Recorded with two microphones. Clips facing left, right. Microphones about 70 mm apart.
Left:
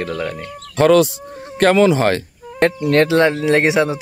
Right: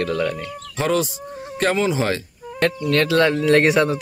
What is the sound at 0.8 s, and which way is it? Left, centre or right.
Speech, left.